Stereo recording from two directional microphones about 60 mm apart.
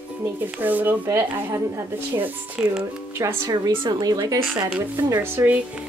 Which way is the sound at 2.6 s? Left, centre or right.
Centre.